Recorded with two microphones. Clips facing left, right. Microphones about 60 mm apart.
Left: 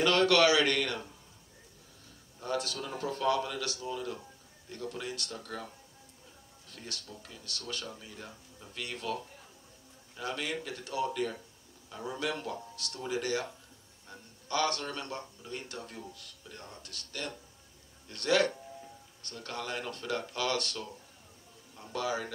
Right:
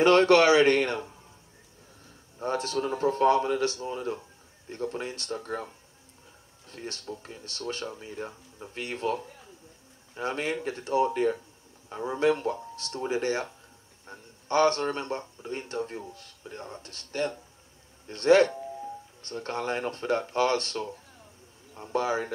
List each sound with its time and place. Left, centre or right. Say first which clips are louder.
0.0 s speech: right 6 dB; right
2.3 s speech: right 6 dB; right
6.7 s speech: right 8 dB; right